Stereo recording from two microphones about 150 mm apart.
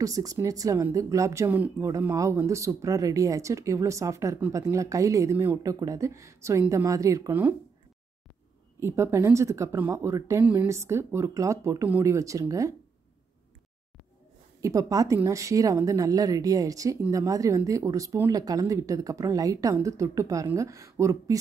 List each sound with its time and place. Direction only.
0.0 s speech: 25° right (ahead or behind)
8.7 s speech: 20° right (ahead or behind)
14.6 s speech: 20° right (ahead or behind)